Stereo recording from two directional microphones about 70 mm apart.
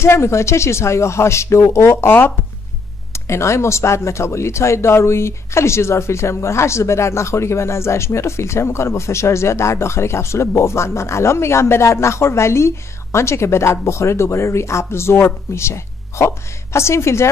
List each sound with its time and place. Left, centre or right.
0.0 s speech: left